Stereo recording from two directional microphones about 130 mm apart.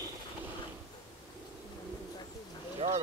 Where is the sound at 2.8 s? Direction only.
50° right (ahead or behind).